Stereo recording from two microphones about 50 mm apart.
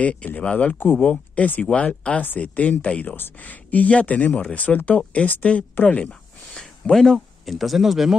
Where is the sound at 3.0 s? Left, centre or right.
Left.